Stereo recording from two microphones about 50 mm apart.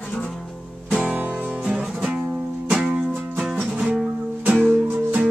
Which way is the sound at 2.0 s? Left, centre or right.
Right.